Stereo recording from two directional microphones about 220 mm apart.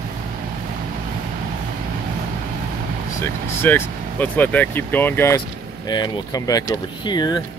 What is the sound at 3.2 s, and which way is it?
Speech, 10° left (ahead or behind).